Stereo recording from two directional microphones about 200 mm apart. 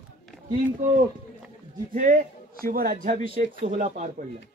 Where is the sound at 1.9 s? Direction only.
40° right (ahead or behind).